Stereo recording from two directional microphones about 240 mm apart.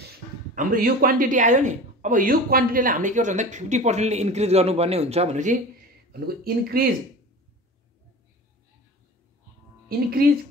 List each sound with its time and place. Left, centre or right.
0.6 s speech: right
6.1 s speech: right
10.2 s speech: right